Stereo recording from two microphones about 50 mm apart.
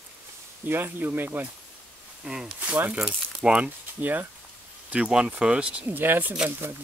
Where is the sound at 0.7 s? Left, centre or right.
Right.